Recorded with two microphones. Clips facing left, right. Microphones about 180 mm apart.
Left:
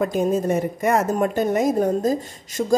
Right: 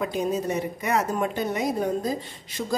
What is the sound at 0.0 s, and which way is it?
A woman's voice, 45° left (ahead or behind).